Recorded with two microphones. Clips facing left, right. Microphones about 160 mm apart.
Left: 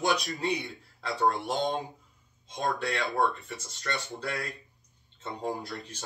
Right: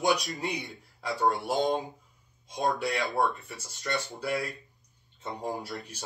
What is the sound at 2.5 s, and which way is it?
Speech, 15° right (ahead or behind).